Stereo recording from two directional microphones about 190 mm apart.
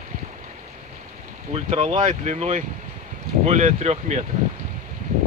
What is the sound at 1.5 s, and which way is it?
Speech, 35° right (ahead or behind).